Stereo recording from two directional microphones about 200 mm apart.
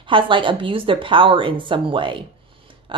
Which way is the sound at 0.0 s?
25° right (ahead or behind).